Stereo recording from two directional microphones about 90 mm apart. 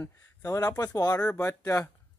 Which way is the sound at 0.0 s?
40° left (ahead or behind).